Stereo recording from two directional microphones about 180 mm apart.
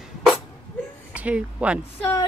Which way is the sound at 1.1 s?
5° right (ahead or behind).